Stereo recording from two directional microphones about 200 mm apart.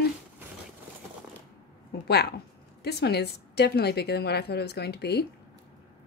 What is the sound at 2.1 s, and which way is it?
A woman's voice, 50° left (ahead or behind).